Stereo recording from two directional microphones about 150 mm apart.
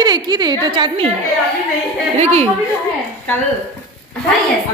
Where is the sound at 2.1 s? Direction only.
45° right (ahead or behind).